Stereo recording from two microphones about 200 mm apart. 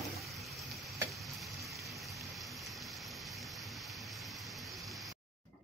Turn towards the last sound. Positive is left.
turn(degrees=0)  # may be behind; listen again after turning